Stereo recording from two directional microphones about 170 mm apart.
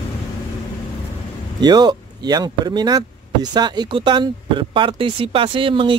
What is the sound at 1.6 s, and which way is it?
Speech, 25° right (ahead or behind).